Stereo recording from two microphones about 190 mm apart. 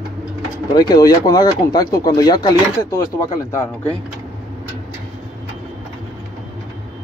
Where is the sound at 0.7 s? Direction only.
20° left (ahead or behind).